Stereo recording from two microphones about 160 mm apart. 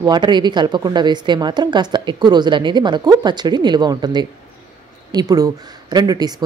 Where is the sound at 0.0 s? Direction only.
25° right (ahead or behind).